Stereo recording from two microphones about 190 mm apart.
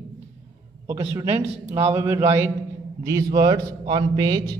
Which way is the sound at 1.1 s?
15° right (ahead or behind).